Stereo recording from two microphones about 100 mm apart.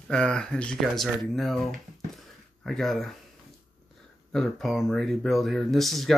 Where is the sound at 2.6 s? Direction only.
Centre (ahead or behind).